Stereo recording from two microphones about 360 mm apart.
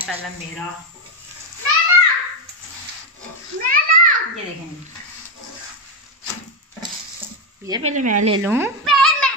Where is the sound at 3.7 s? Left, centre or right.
Right.